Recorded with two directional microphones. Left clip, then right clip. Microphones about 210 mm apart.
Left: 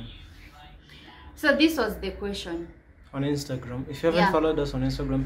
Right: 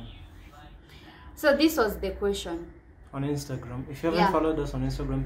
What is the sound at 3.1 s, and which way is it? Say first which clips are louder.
Speech: left 3 dB; 15° left (ahead or behind).